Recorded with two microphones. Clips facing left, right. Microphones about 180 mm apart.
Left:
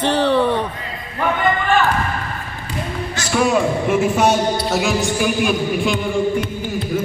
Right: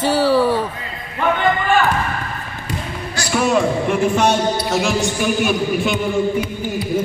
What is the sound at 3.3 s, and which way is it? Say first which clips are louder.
Speech: even; centre (ahead or behind).